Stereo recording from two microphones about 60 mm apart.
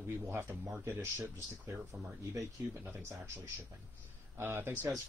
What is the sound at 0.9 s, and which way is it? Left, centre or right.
Speech, right.